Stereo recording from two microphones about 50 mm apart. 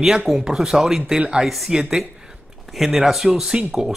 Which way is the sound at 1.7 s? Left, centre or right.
Centre.